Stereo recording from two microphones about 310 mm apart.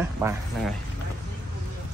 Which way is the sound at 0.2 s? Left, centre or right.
Centre.